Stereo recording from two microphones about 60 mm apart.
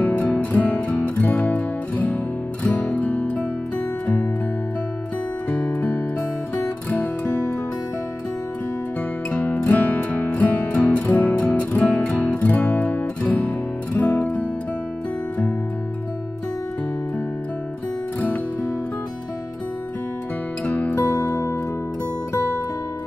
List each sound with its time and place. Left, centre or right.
0.0 s music: left
5.5 s music: left
9.3 s music: left
18.2 s music: left
20.6 s music: left